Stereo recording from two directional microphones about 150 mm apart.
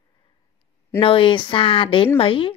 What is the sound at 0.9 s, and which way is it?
Speech, 35° left (ahead or behind).